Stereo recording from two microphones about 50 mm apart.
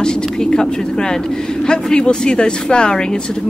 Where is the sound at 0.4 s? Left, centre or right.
Centre.